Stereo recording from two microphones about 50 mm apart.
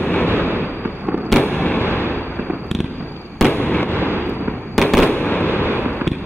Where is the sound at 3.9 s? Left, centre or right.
Right.